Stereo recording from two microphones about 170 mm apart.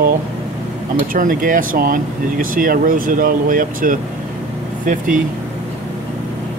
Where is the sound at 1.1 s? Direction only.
55° right (ahead or behind).